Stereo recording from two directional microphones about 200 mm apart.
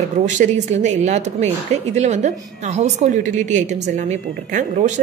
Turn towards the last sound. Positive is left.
turn(degrees=-35)  # may be behind; listen again after turning